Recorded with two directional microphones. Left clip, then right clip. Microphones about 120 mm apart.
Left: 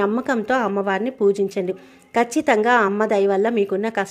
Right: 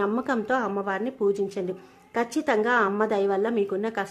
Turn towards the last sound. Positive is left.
turn(degrees=30)  # may be behind; listen again after turning